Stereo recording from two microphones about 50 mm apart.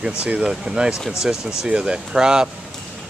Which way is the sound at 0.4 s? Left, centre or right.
Centre.